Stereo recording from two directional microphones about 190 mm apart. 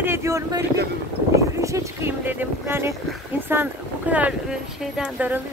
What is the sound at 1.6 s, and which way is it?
Speech, 15° right (ahead or behind).